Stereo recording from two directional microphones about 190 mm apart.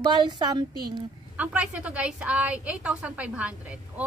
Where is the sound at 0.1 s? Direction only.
20° right (ahead or behind).